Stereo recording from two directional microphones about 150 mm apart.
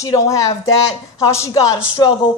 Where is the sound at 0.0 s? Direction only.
20° left (ahead or behind).